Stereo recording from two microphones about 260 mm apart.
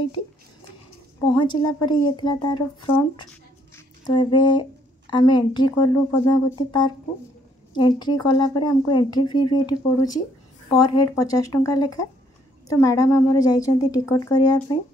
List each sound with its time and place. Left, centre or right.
1.2 s speech: centre